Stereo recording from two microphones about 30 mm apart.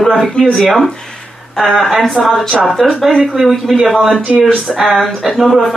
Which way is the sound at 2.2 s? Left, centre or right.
Centre.